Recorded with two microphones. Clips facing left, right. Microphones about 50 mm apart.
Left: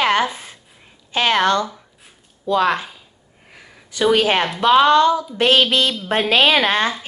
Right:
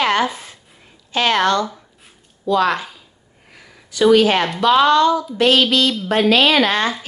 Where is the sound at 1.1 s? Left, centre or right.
Left.